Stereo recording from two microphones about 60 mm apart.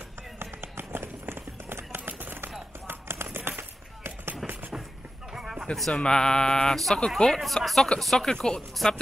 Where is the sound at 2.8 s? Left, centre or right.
Right.